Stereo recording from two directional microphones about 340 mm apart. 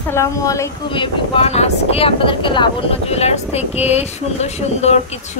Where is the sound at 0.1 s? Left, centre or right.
Centre.